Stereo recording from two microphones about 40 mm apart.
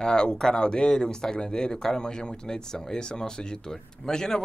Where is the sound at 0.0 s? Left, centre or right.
Centre.